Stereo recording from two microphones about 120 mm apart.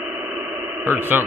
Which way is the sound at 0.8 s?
15° right (ahead or behind).